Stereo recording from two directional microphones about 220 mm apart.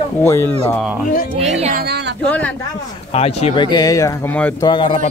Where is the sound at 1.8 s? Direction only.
50° right (ahead or behind).